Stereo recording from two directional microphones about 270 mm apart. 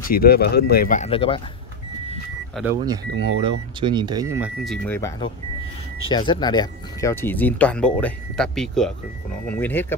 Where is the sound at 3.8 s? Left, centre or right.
Centre.